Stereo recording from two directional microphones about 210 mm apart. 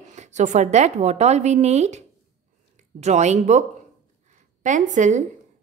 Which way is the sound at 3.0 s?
35° right (ahead or behind).